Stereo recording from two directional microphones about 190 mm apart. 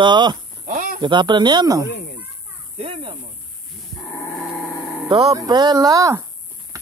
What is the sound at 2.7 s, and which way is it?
Snake, 30° right (ahead or behind).